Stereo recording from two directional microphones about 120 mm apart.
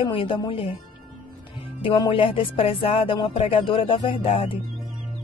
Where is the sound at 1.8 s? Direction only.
45° left (ahead or behind).